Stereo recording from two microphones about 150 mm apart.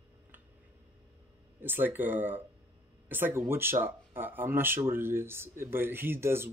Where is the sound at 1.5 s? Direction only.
15° right (ahead or behind).